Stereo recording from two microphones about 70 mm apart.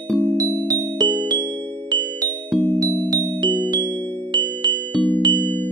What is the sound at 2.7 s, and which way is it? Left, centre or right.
Music, right.